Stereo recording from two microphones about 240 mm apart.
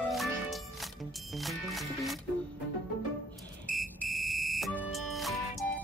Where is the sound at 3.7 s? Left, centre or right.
Centre.